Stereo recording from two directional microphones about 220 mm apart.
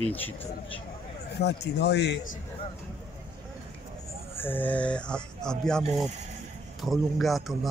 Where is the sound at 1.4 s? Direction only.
50° left (ahead or behind).